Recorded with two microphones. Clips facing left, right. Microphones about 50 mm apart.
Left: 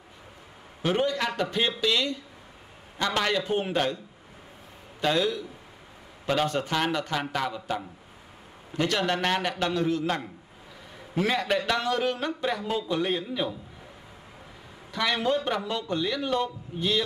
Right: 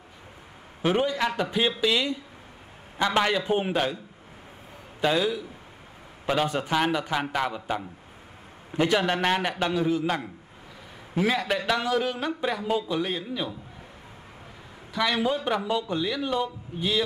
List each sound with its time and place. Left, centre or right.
0.8 s a man's voice: centre
5.0 s a man's voice: centre
14.9 s a man's voice: centre